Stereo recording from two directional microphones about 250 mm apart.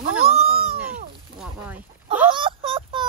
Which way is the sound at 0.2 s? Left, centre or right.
Right.